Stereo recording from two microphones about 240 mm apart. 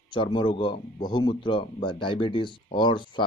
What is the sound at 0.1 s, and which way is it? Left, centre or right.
A man's voice, centre.